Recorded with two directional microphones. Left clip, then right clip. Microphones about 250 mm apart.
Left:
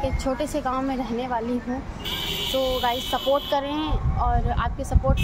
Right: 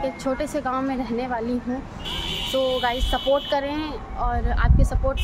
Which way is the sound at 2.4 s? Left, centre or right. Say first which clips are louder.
Right 2 dB; left.